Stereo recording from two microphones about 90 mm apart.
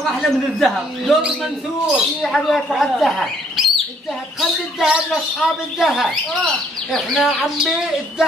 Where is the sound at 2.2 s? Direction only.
Centre (ahead or behind).